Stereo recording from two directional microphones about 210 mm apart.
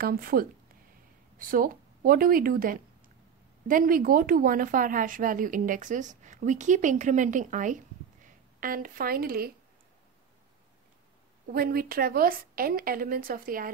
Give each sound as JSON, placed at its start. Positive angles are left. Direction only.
{"t": 0.0, "sound": "a woman's voice", "side_deg": -45}
{"t": 1.5, "sound": "a woman's voice", "side_deg": -40}
{"t": 11.5, "sound": "a woman's voice", "side_deg": -45}